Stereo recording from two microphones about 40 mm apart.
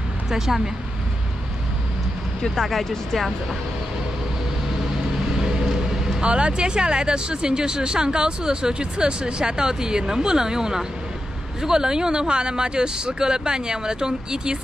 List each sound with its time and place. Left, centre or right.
2.4 s speech: centre
5.4 s vehicle: centre
6.2 s speech: right